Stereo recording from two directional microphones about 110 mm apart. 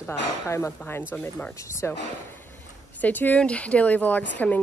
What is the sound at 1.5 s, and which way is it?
Speech, 25° left (ahead or behind).